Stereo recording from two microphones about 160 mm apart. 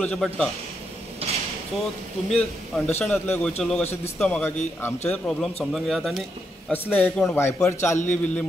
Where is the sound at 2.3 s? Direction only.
Centre (ahead or behind).